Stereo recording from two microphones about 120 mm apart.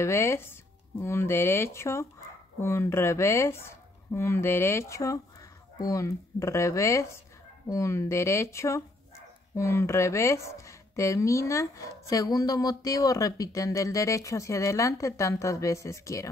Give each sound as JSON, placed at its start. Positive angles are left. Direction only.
{"t": 0.0, "sound": "speech", "side_deg": 20}